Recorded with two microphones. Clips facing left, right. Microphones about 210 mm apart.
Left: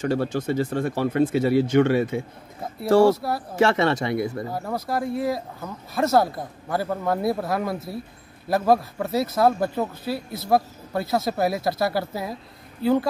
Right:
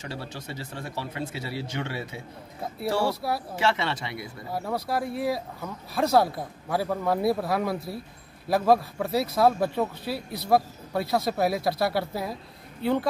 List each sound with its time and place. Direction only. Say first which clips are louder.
0.0 s speech: left 13 dB; 50° left (ahead or behind)
3.2 s speech: left 2 dB; centre (ahead or behind)
3.5 s speech: left 10 dB; 45° left (ahead or behind)
4.5 s speech: left 2 dB; centre (ahead or behind)